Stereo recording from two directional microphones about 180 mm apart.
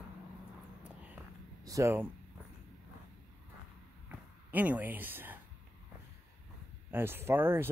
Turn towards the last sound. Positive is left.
turn(degrees=-15)  # may be behind; listen again after turning